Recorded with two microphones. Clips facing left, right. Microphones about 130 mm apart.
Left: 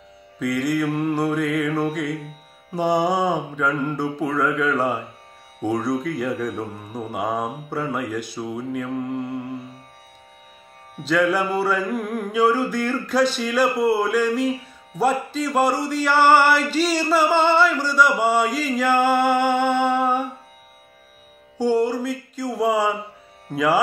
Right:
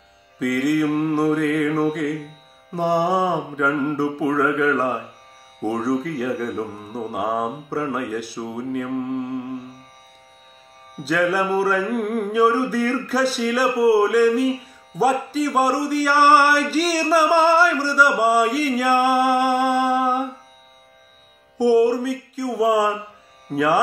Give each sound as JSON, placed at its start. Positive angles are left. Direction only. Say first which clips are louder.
{"t": 0.4, "sound": "music", "louder": "right 3 dB", "side_deg": -5}
{"t": 11.0, "sound": "music", "louder": "even", "side_deg": -5}
{"t": 21.5, "sound": "speech", "louder": "right 4 dB", "side_deg": -10}
{"t": 22.0, "sound": "a sound", "louder": "right 2 dB", "side_deg": -5}
{"t": 23.5, "sound": "music", "louder": "right 1 dB", "side_deg": 0}